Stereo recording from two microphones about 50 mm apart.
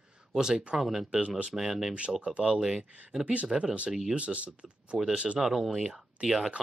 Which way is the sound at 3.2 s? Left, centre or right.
Right.